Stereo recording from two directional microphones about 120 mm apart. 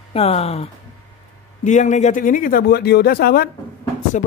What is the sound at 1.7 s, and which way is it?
Speech, 85° left.